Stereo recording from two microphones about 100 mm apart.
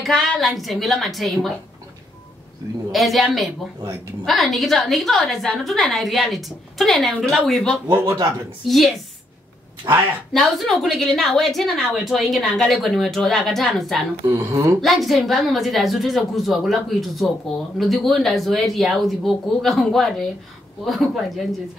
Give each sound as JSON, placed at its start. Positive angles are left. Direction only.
{"t": 0.0, "sound": "a woman's voice", "side_deg": 0}
{"t": 2.9, "sound": "a woman's voice", "side_deg": 0}
{"t": 7.9, "sound": "speech", "side_deg": -35}
{"t": 8.6, "sound": "a woman's voice", "side_deg": 0}
{"t": 10.3, "sound": "a woman's voice", "side_deg": 0}
{"t": 14.2, "sound": "speech", "side_deg": -30}
{"t": 14.8, "sound": "a woman's voice", "side_deg": 0}